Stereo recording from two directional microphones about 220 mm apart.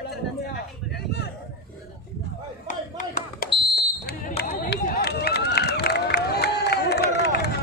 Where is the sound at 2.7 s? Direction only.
35° left (ahead or behind).